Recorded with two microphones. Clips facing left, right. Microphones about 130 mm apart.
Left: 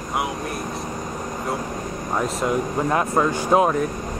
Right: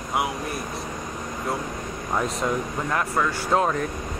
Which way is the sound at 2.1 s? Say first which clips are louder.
Left 2 dB; 5° left (ahead or behind).